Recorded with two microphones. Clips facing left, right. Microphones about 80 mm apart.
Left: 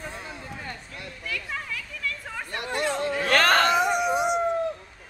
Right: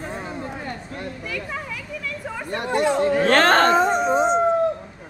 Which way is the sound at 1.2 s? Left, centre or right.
Centre.